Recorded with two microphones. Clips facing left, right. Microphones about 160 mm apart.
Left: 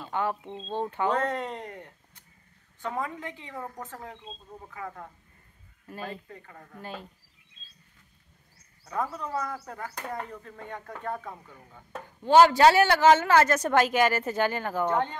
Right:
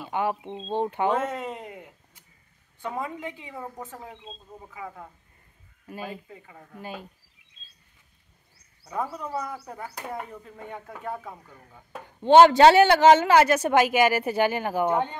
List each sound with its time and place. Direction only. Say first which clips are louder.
0.0 s a woman's voice: right 2 dB; 15° right (ahead or behind)
1.1 s a woman's voice: right 1 dB; 5° right (ahead or behind)
9.1 s a woman's voice: even; 10° right (ahead or behind)
12.2 s a woman's voice: right 4 dB; 25° right (ahead or behind)